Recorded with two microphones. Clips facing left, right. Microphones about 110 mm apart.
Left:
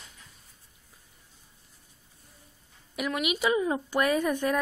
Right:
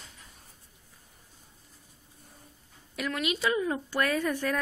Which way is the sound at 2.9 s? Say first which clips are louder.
Left 2 dB; 15° left (ahead or behind).